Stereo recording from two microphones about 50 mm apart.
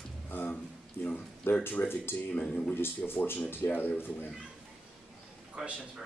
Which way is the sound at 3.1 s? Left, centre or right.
Left.